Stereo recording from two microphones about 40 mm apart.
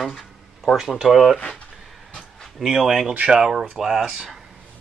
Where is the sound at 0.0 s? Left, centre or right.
Centre.